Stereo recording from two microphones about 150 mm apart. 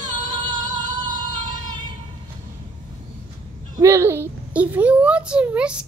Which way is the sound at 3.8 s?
15° right (ahead or behind).